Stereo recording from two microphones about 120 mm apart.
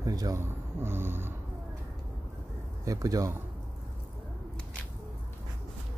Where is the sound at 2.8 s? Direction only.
30° right (ahead or behind).